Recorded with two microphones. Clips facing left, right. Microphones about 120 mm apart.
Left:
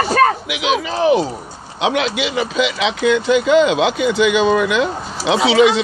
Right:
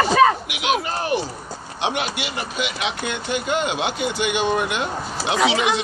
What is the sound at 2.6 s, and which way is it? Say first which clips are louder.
Speech: left 8 dB; 90° left.